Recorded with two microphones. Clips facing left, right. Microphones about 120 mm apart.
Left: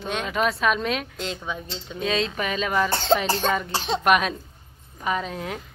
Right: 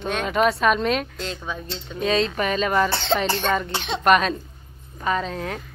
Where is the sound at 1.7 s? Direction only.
Centre (ahead or behind).